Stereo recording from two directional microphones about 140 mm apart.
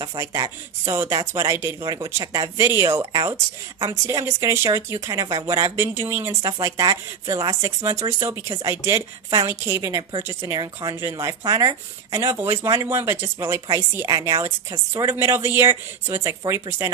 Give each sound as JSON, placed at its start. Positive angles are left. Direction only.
{"t": 0.0, "sound": "speech", "side_deg": -25}